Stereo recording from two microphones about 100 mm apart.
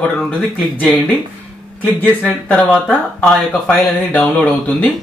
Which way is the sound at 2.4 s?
15° left (ahead or behind).